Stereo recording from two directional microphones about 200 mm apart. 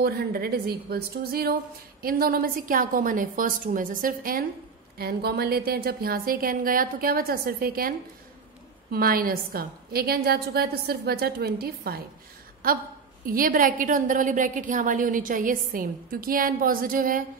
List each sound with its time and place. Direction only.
0.0 s a woman's voice: 50° right (ahead or behind)
8.9 s a woman's voice: 45° right (ahead or behind)
13.2 s a woman's voice: 45° right (ahead or behind)